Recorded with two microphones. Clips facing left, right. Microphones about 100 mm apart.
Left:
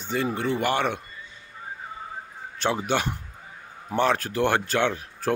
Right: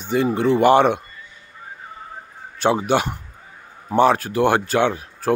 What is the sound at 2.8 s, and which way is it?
Speech, 10° right (ahead or behind).